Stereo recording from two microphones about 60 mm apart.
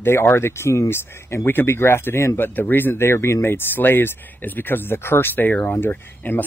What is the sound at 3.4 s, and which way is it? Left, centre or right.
Speech, left.